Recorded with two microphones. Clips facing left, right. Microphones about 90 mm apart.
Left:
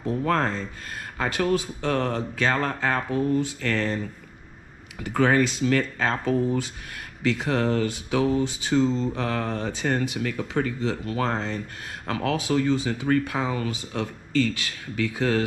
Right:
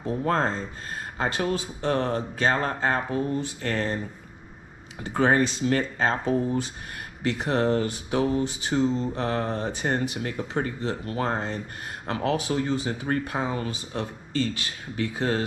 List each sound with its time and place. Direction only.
0.2 s speech: 25° right (ahead or behind)
5.0 s speech: 25° right (ahead or behind)
8.7 s mantra: 15° right (ahead or behind)
9.2 s speech: 25° right (ahead or behind)
12.4 s speech: 85° left
12.7 s speech: 25° right (ahead or behind)